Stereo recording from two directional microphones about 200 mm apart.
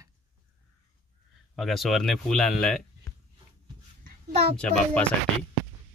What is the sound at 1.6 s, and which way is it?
Speech, centre (ahead or behind).